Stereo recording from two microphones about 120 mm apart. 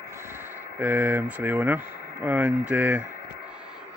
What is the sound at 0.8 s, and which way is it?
Speech, 15° right (ahead or behind).